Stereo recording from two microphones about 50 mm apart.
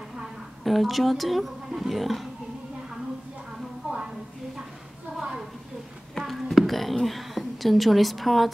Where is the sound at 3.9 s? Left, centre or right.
Centre.